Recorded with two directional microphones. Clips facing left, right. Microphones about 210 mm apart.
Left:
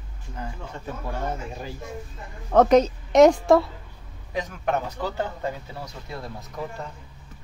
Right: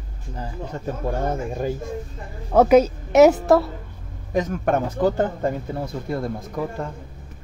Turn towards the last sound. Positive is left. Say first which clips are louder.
# right 6 dB
turn(degrees=-50)  # may be behind; listen again after turning